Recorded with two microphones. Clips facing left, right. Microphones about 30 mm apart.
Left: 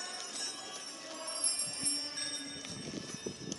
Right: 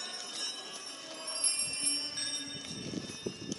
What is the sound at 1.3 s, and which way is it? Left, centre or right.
Jingle bell, right.